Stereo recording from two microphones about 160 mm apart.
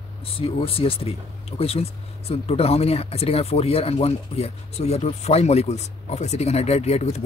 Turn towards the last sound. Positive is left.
turn(degrees=40)  # may be behind; listen again after turning